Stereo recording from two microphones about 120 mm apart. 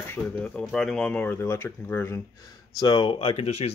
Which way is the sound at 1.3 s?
20° left (ahead or behind).